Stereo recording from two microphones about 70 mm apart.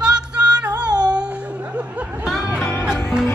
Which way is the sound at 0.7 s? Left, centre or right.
Right.